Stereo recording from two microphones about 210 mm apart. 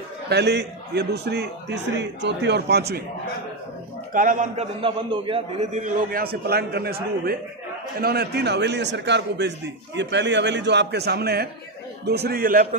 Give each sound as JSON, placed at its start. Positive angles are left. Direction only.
{"t": 0.3, "sound": "a man's voice", "side_deg": -50}
{"t": 4.1, "sound": "a man's voice", "side_deg": -40}